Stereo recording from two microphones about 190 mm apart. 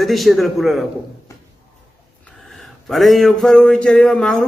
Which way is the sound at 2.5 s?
Centre (ahead or behind).